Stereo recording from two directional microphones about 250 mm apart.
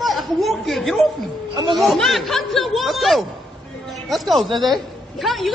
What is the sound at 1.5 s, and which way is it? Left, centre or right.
Speech, centre.